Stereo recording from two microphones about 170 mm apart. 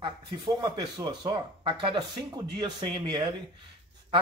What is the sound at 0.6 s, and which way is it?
A man's voice, 25° right (ahead or behind).